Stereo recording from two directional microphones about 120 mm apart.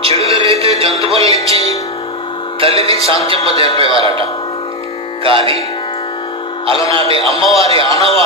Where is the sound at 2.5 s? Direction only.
50° right (ahead or behind).